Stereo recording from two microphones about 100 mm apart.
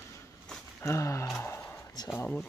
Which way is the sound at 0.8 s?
30° left (ahead or behind).